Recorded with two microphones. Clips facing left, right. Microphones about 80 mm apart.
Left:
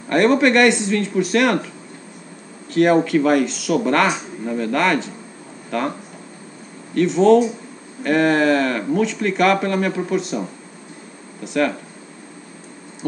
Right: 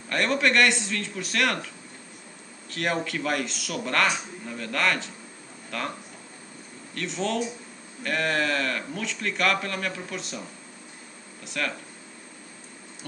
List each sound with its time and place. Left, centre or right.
0.1 s speech: centre
2.7 s speech: centre
7.2 s speech: centre